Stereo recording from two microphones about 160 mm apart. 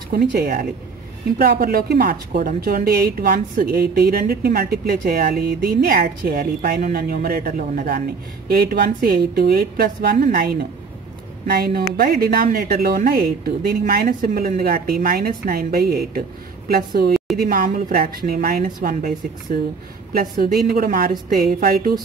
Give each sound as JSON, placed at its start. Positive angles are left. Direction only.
{"t": 0.1, "sound": "a woman's voice", "side_deg": -70}
{"t": 8.5, "sound": "a woman's voice", "side_deg": -75}
{"t": 17.5, "sound": "a woman's voice", "side_deg": -60}